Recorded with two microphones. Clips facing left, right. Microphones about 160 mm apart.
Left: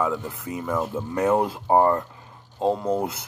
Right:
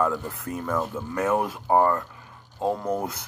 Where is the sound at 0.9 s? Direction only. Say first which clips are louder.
Left 5 dB; 25° left (ahead or behind).